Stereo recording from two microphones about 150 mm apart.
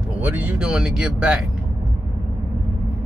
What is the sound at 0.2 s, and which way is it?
Speech, 5° right (ahead or behind).